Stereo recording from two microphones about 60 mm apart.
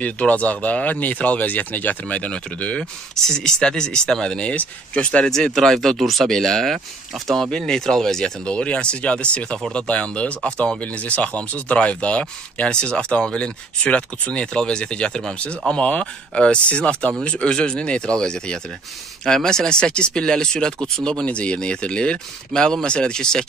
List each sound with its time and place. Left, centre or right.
0.0 s speech: left
5.3 s speech: centre